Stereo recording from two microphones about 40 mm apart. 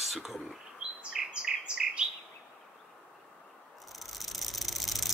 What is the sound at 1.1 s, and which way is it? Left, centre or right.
Bird, centre.